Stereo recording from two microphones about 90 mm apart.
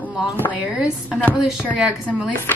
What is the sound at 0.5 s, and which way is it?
Speech, 15° right (ahead or behind).